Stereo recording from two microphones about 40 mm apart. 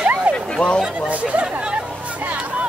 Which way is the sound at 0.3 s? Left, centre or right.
Right.